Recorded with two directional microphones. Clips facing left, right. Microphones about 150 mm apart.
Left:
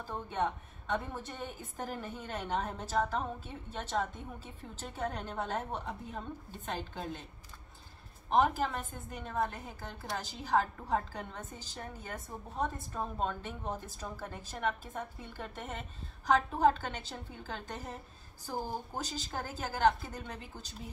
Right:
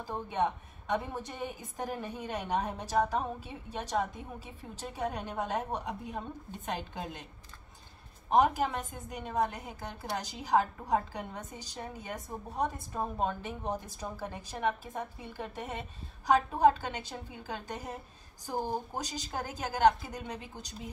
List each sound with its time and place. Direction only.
0.0 s a woman's voice: 15° right (ahead or behind)
8.3 s a woman's voice: 15° right (ahead or behind)